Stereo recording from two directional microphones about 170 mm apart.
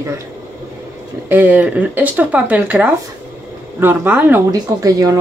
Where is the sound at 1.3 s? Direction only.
10° right (ahead or behind).